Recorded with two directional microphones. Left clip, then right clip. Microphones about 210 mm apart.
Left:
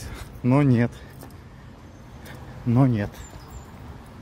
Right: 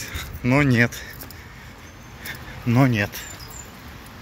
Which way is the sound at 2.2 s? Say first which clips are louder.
Right 5 dB; 5° left (ahead or behind).